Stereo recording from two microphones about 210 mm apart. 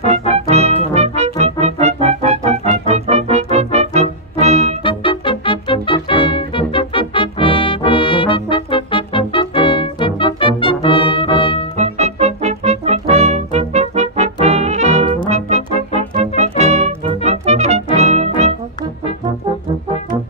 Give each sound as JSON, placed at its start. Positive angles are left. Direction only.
{"t": 0.3, "sound": "music", "side_deg": -30}
{"t": 4.8, "sound": "music", "side_deg": 25}
{"t": 11.7, "sound": "music", "side_deg": -30}